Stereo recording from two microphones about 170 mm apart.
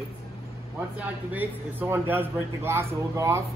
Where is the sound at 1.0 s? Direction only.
10° right (ahead or behind).